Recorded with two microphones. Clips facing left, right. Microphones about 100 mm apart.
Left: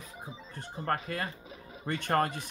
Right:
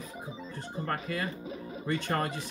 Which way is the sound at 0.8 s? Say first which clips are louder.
Left 1 dB; 40° left (ahead or behind).